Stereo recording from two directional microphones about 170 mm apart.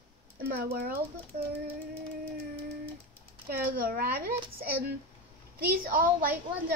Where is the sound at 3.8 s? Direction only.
60° right (ahead or behind).